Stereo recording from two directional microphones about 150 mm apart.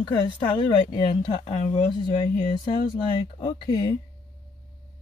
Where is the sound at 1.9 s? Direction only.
30° left (ahead or behind).